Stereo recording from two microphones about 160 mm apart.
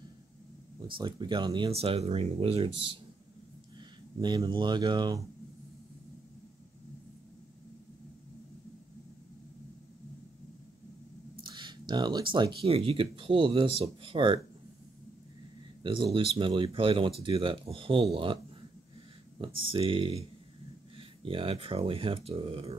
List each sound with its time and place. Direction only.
0.8 s speech: 30° right (ahead or behind)
4.2 s speech: 25° right (ahead or behind)
11.4 s speech: 30° right (ahead or behind)
15.8 s speech: 30° right (ahead or behind)
19.4 s speech: 35° right (ahead or behind)